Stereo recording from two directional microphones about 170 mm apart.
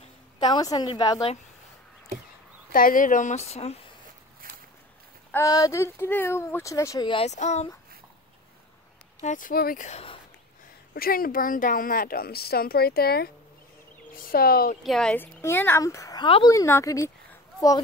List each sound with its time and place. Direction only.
0.4 s a woman's voice: 25° left (ahead or behind)
2.7 s speech: 55° left (ahead or behind); by 3.7 s 40° left (ahead or behind)
4.4 s walk: 55° right (ahead or behind)
5.3 s speech: 20° left (ahead or behind)
7.2 s speech: 40° left (ahead or behind)
9.2 s speech: 50° left (ahead or behind)
9.8 s speech: 35° left (ahead or behind)
10.9 s a woman's voice: 60° left (ahead or behind)
14.8 s a woman's voice: centre (ahead or behind); by 17.1 s 20° left (ahead or behind)